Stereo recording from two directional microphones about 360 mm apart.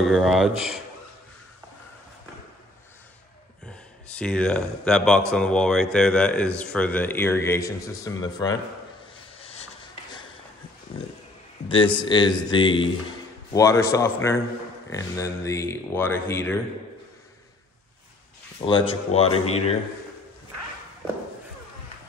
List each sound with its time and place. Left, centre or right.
0.0 s speech: centre
4.2 s speech: centre
9.4 s a sound: centre
11.9 s speech: centre
18.7 s speech: centre
19.2 s speech: left